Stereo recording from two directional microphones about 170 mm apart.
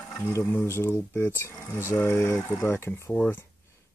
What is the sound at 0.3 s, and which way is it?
Speech, 15° left (ahead or behind).